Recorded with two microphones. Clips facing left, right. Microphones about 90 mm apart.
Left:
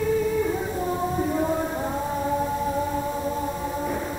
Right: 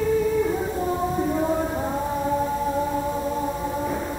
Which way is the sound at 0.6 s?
15° right (ahead or behind).